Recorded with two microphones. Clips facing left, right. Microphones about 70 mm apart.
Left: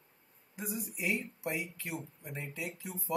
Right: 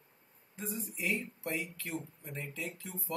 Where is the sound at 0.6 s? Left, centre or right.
Centre.